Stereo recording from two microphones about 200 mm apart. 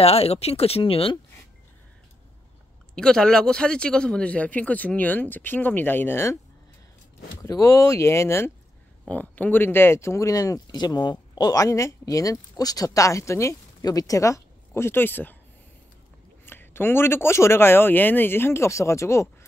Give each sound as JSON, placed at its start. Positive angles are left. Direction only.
{"t": 0.0, "sound": "speech", "side_deg": 30}
{"t": 3.0, "sound": "speech", "side_deg": 5}
{"t": 7.4, "sound": "speech", "side_deg": 15}
{"t": 16.4, "sound": "speech", "side_deg": 10}